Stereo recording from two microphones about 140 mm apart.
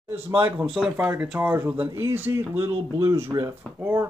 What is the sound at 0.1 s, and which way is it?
Speech, 15° right (ahead or behind).